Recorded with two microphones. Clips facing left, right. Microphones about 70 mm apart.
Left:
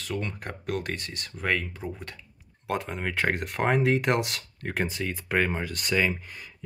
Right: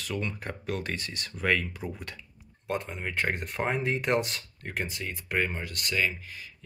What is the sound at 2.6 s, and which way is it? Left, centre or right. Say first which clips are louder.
Speech: left 3 dB; left.